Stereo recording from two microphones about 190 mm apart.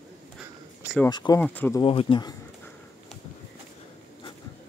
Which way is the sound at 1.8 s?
30° left (ahead or behind).